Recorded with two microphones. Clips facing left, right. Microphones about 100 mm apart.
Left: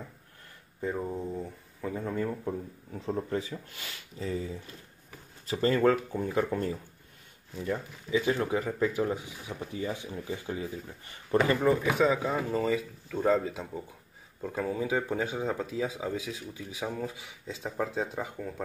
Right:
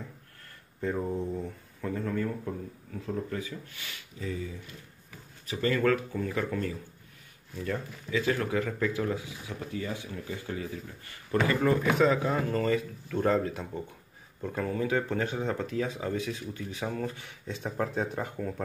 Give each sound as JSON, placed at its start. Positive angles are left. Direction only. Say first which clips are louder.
{"t": 0.7, "sound": "speech", "louder": "right 2 dB", "side_deg": 5}
{"t": 2.0, "sound": "speech", "louder": "even", "side_deg": 20}
{"t": 7.5, "sound": "speech", "louder": "left 1 dB", "side_deg": 15}